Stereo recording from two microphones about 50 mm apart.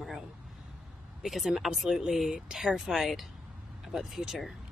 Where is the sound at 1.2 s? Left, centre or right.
Centre.